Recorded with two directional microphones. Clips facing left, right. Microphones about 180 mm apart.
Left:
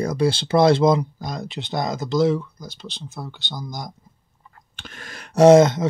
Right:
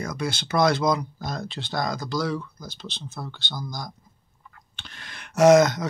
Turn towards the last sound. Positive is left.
turn(degrees=25)  # may be behind; listen again after turning